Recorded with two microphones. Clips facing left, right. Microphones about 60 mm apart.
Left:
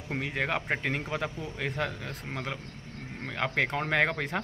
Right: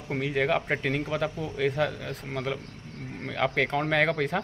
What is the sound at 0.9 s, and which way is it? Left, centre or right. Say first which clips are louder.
Speech: right 4 dB; left.